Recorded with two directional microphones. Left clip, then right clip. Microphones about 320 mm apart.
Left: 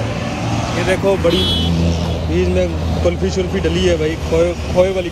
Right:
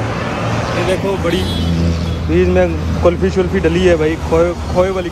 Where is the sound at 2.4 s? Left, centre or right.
Centre.